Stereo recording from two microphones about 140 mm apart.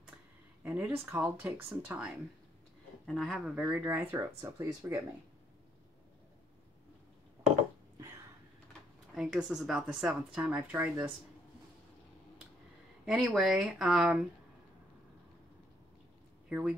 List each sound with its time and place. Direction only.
0.7 s a woman's voice: 15° right (ahead or behind)
9.1 s a woman's voice: 5° right (ahead or behind)
13.0 s speech: 5° right (ahead or behind)
16.4 s speech: 10° right (ahead or behind)